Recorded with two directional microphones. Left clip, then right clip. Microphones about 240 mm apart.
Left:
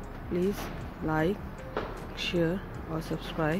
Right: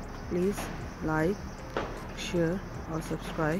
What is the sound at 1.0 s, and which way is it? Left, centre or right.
Speech, centre.